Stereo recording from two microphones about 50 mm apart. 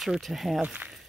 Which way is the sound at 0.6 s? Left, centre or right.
Right.